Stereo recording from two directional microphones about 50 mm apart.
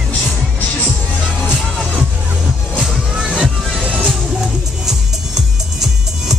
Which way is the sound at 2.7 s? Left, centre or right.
Centre.